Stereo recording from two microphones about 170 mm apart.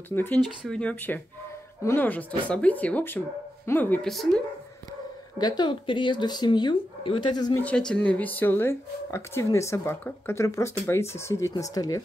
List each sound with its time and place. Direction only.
0.1 s speech: 10° left (ahead or behind)
5.4 s speech: 25° left (ahead or behind)
7.6 s speech: 5° left (ahead or behind)